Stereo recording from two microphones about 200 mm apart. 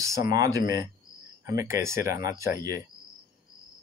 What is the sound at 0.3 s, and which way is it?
Speech, 15° right (ahead or behind).